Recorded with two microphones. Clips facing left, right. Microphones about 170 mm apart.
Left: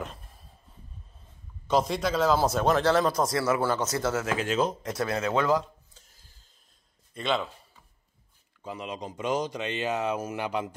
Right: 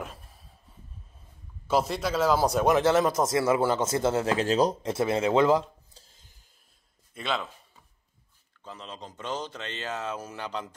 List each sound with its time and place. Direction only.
0.0 s a sound: 5° right (ahead or behind)
1.7 s speech: 5° right (ahead or behind)
7.2 s a man's voice: centre (ahead or behind)
8.6 s speech: 10° left (ahead or behind)